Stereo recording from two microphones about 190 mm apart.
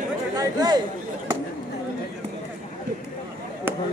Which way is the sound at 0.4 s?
20° right (ahead or behind).